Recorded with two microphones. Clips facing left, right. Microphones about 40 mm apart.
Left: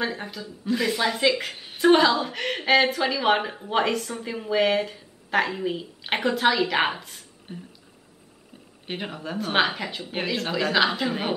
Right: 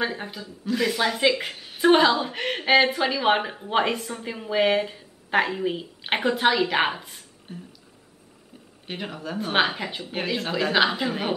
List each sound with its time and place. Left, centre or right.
0.0 s a woman's voice: centre
1.5 s a sound: centre
1.8 s a woman's voice: centre
7.5 s speech: left
8.8 s speech: centre
9.4 s a woman's voice: centre